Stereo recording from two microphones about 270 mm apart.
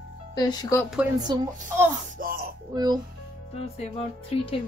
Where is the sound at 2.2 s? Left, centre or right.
Right.